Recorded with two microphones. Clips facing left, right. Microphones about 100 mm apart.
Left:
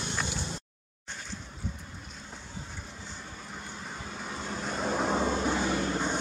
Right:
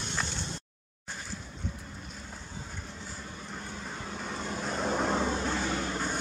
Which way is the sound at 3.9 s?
Centre (ahead or behind).